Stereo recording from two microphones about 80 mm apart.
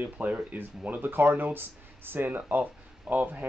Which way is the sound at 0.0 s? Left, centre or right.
Centre.